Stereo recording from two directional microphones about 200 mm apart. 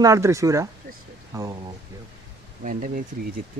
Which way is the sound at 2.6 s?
40° right (ahead or behind).